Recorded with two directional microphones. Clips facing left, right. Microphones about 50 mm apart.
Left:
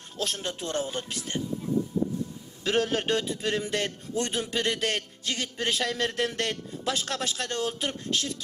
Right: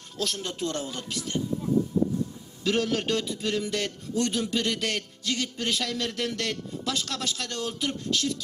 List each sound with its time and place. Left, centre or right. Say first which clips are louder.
0.2 s a man's voice: right 1 dB; left
2.6 s a man's voice: even; left